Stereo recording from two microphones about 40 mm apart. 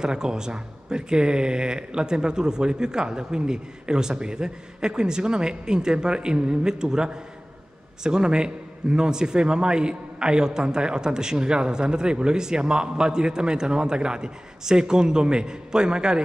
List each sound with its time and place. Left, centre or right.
0.0 s a man's voice: centre